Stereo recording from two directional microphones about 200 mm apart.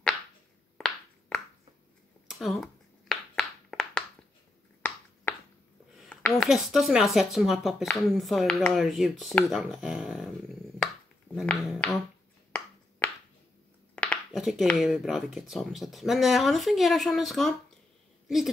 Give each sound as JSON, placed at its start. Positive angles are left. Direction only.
{"t": 0.7, "sound": "a sound", "side_deg": 5}
{"t": 6.5, "sound": "speech", "side_deg": 0}
{"t": 11.3, "sound": "speech", "side_deg": 0}
{"t": 13.9, "sound": "speech", "side_deg": 5}